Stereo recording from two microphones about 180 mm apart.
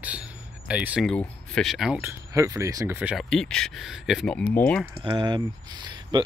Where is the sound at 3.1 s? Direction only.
Centre (ahead or behind).